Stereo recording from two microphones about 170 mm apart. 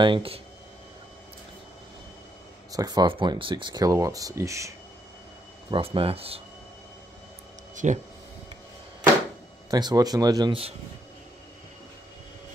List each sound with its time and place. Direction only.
0.0 s speech: 30° right (ahead or behind)
2.7 s speech: 20° right (ahead or behind)
5.7 s speech: 30° right (ahead or behind)
7.7 s speech: 45° right (ahead or behind)
9.7 s speech: 25° right (ahead or behind)